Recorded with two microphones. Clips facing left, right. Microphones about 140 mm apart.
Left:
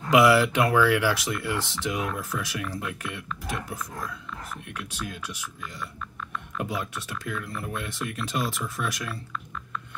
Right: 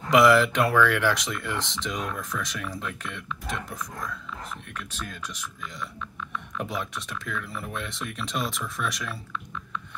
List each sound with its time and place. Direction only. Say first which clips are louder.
0.1 s speech: even; 5° left (ahead or behind)